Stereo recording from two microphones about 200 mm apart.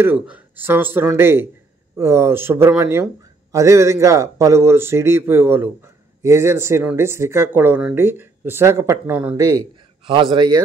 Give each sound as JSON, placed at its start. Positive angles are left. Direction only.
{"t": 0.0, "sound": "speech", "side_deg": -10}